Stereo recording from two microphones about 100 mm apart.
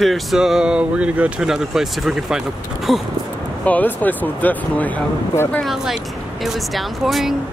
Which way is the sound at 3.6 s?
15° left (ahead or behind).